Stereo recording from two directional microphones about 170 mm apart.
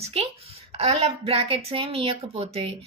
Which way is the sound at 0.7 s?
35° right (ahead or behind).